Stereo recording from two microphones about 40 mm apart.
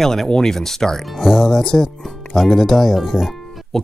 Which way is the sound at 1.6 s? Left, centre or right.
Centre.